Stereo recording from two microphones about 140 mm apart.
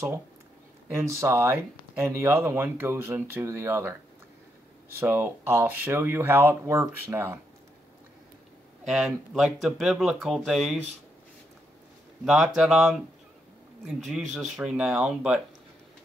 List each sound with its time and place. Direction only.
0.9 s speech: 20° right (ahead or behind)
5.0 s speech: 15° right (ahead or behind)
8.8 s speech: centre (ahead or behind)
12.3 s speech: 5° right (ahead or behind)